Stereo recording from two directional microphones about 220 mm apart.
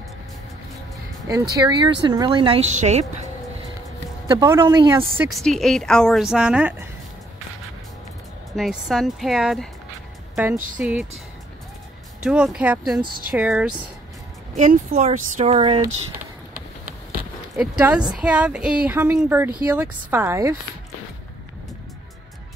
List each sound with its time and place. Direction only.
1.6 s speech: 20° right (ahead or behind)
4.3 s a woman's voice: 15° right (ahead or behind)
5.4 s a woman's voice: centre (ahead or behind)
8.5 s a woman's voice: centre (ahead or behind)
10.5 s speech: 35° right (ahead or behind)
10.8 s a woman's voice: 5° right (ahead or behind)
12.2 s a woman's voice: 5° right (ahead or behind)
14.6 s speech: 35° right (ahead or behind)
17.6 s a woman's voice: 5° right (ahead or behind)